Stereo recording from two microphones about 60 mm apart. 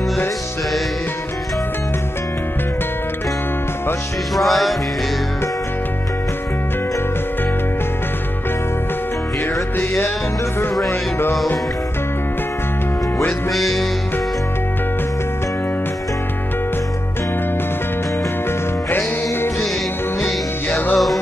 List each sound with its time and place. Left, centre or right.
4.4 s music: centre
10.9 s music: left
13.5 s music: centre
18.9 s music: left
20.9 s music: centre